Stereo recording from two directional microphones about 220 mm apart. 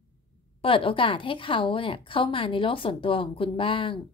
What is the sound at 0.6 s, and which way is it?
A woman's voice, 25° left (ahead or behind).